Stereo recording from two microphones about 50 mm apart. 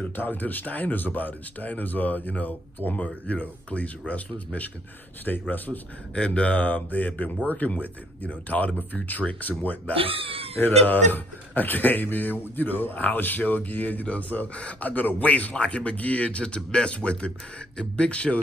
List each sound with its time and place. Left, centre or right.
0.0 s speech: left